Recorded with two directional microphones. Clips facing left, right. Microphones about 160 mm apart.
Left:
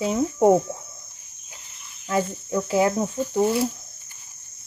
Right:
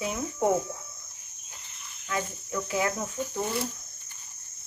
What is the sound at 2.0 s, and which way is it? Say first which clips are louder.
Cricket: left 8 dB; 30° left (ahead or behind).